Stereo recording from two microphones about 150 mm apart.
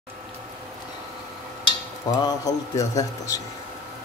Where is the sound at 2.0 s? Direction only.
25° left (ahead or behind).